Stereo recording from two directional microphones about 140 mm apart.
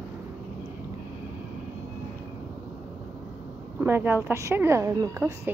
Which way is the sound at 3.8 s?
15° right (ahead or behind).